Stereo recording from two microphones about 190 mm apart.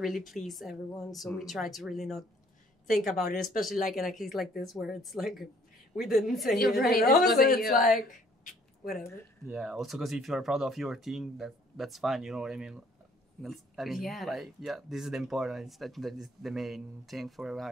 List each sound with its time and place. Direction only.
0.0 s speech: centre (ahead or behind)
6.5 s a woman's voice: 50° left (ahead or behind)
9.5 s speech: 5° right (ahead or behind)